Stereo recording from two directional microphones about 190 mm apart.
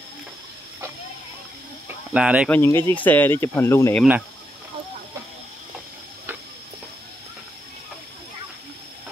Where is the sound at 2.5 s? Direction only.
15° left (ahead or behind).